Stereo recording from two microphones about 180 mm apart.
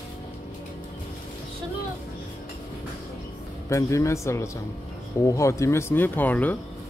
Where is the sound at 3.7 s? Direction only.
15° left (ahead or behind).